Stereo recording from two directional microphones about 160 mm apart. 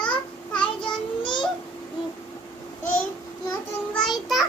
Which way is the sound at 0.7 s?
30° left (ahead or behind).